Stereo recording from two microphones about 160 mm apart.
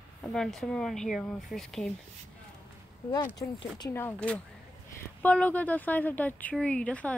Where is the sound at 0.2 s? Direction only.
5° left (ahead or behind).